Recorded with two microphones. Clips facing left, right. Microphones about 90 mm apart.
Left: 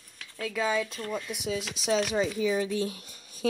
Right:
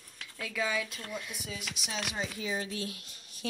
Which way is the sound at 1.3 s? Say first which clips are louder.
Left 10 dB; 80° left.